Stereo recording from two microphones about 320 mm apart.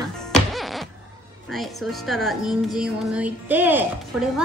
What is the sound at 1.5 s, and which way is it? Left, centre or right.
A woman's voice, centre.